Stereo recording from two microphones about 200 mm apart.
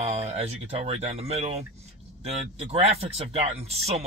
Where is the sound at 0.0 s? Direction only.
35° right (ahead or behind).